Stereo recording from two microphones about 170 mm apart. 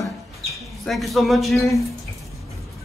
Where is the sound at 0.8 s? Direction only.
Centre (ahead or behind).